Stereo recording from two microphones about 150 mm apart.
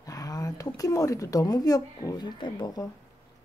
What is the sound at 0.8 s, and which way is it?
Speech, 20° left (ahead or behind).